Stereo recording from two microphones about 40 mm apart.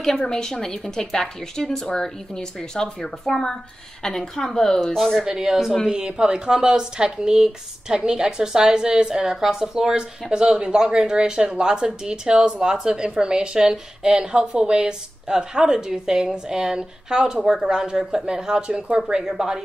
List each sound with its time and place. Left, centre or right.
0.3 s a woman's voice: centre
5.2 s a woman's voice: centre
5.9 s a woman's voice: right